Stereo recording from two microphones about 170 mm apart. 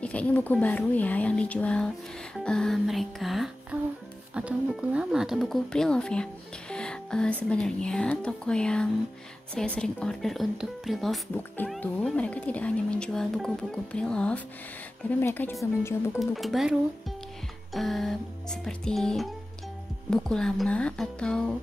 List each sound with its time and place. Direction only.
0.0 s speech: 5° left (ahead or behind)
16.2 s speech: centre (ahead or behind)
17.7 s speech: centre (ahead or behind)